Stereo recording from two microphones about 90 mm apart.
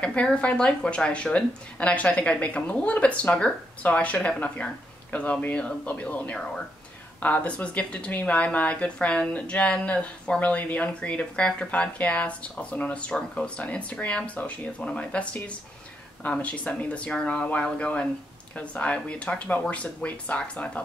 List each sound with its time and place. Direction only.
0.0 s speech: 10° left (ahead or behind)